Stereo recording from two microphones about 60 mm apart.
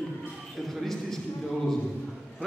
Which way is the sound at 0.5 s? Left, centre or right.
Centre.